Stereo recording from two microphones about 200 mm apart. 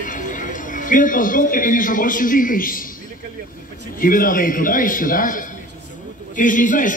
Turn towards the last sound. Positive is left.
turn(degrees=40)  # may be behind; listen again after turning